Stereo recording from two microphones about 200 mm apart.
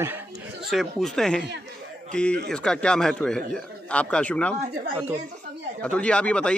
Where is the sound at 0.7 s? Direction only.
Centre (ahead or behind).